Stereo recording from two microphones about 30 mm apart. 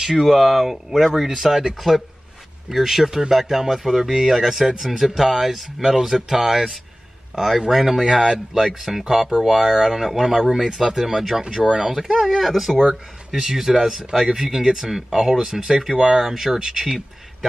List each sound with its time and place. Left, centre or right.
0.0 s speech: centre
4.6 s speech: centre
11.6 s speech: right
11.9 s speech: centre
12.3 s speech: centre
16.5 s speech: right